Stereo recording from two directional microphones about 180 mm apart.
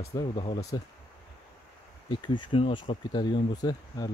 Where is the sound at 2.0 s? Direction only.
25° left (ahead or behind).